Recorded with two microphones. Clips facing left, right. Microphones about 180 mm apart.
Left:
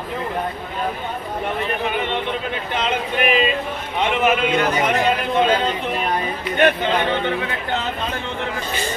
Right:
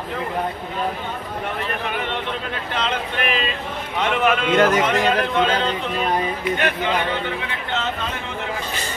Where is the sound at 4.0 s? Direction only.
Centre (ahead or behind).